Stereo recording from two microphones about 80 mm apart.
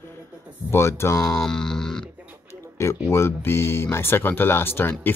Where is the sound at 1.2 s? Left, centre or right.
Centre.